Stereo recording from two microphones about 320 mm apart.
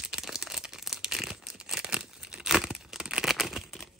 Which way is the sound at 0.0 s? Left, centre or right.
Centre.